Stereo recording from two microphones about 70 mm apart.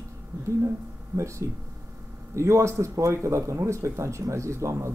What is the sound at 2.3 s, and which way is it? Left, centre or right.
Speech, right.